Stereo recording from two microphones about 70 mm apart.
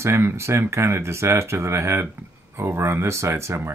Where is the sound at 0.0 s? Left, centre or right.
Right.